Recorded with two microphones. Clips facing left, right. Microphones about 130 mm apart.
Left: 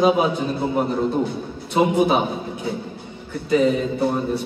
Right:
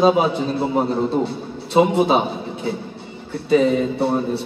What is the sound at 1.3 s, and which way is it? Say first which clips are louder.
Speech: even; 30° right (ahead or behind).